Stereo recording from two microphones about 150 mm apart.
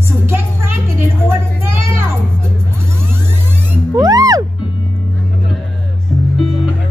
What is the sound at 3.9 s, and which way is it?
Music, 25° right (ahead or behind).